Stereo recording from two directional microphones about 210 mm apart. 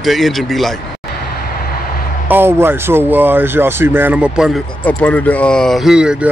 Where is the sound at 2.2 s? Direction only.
10° right (ahead or behind).